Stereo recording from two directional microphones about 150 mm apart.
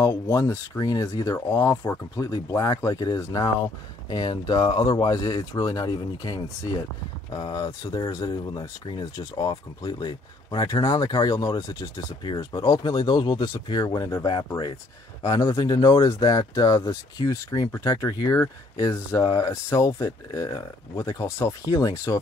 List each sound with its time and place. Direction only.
0.0 s speech: 20° left (ahead or behind)